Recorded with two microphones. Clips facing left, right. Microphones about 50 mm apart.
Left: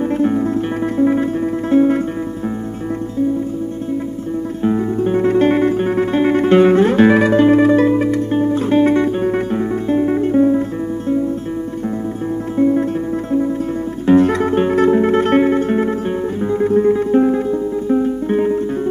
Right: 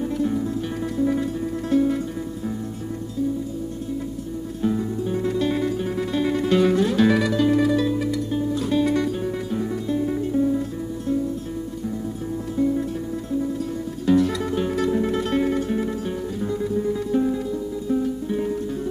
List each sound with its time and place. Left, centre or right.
0.2 s music: left
4.6 s music: left
12.5 s music: left
14.0 s music: left